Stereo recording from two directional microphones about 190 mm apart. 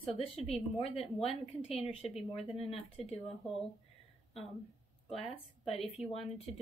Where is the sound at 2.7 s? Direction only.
30° left (ahead or behind).